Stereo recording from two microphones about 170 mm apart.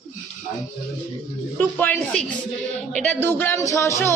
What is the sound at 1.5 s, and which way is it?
A man's voice, 10° left (ahead or behind).